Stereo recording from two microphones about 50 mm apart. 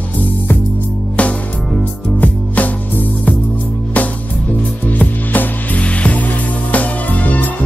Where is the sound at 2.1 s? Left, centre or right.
Left.